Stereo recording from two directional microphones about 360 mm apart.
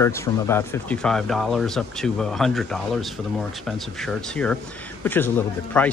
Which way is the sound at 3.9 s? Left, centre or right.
Centre.